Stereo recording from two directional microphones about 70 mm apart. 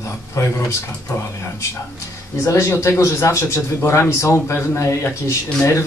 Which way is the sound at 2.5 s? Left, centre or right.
Left.